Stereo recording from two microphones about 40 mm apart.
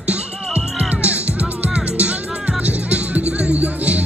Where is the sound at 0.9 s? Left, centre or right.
Right.